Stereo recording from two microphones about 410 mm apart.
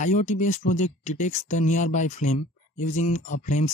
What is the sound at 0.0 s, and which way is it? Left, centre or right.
Speech, centre.